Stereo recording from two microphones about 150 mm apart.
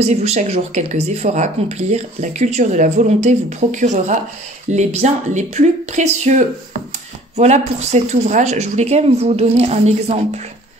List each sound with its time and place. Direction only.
0.0 s speech: 45° right (ahead or behind)